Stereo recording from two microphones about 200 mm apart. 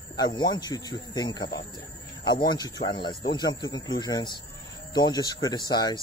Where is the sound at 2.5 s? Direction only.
20° left (ahead or behind).